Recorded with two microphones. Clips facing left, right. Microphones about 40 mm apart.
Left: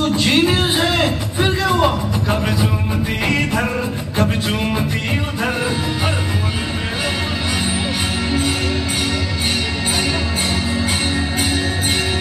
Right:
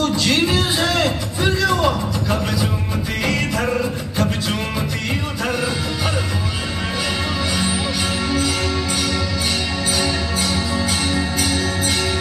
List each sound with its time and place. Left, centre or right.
0.0 s music: left